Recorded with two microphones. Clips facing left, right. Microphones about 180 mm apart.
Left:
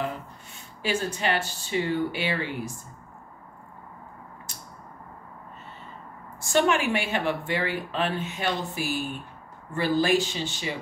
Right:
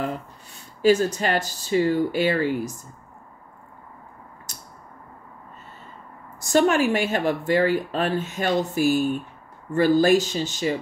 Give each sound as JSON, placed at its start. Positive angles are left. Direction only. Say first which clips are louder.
{"t": 0.8, "sound": "speech", "louder": "right 8 dB", "side_deg": -40}
{"t": 6.4, "sound": "speech", "louder": "right 4 dB", "side_deg": -40}